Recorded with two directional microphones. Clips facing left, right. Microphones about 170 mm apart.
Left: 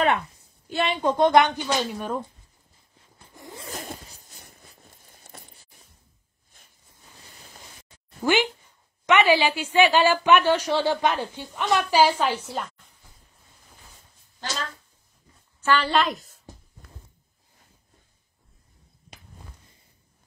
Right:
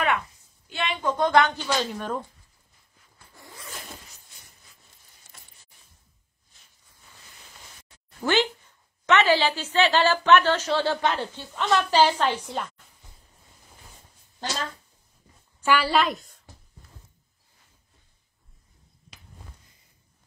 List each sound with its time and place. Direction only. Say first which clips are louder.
0.7 s speech: left 4 dB; 40° left (ahead or behind); by 2.2 s 10° left (ahead or behind)
3.0 s dog: left 5 dB; 20° left (ahead or behind)
3.6 s tearing: left 6 dB; 40° left (ahead or behind); by 5.5 s 55° left (ahead or behind)
6.5 s zipper: left 5 dB; 55° left (ahead or behind)
8.2 s a woman's voice: left 1 dB; 10° left (ahead or behind)
15.6 s a woman's voice: even; 10° right (ahead or behind)